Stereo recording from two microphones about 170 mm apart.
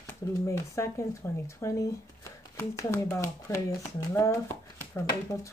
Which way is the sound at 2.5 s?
15° left (ahead or behind).